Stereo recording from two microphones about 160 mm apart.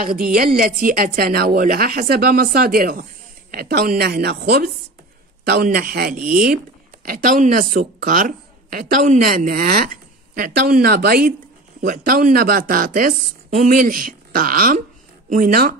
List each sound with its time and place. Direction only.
0.0 s a woman's voice: 65° right (ahead or behind)
7.1 s a woman's voice: 60° right (ahead or behind)
8.7 s a woman's voice: 55° right (ahead or behind)